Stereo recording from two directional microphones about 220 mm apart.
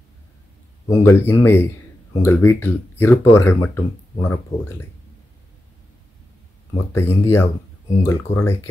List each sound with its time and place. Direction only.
0.8 s speech: 15° left (ahead or behind)
6.9 s speech: 10° left (ahead or behind)